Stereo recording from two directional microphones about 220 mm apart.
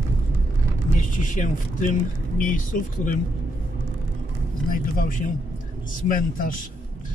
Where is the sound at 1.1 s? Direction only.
35° left (ahead or behind).